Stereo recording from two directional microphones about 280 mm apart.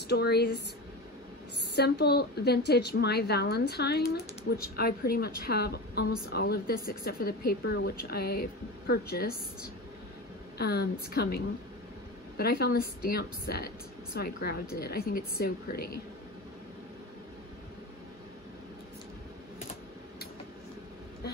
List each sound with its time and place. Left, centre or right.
0.1 s a woman's voice: left
1.8 s a woman's voice: left
10.6 s a woman's voice: left